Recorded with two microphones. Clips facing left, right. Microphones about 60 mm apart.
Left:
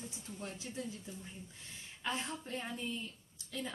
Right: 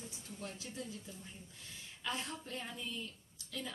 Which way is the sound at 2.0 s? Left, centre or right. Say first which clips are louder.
Left 2 dB; left.